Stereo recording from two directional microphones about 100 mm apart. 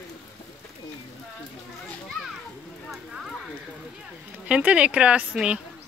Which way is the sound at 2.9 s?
Centre (ahead or behind).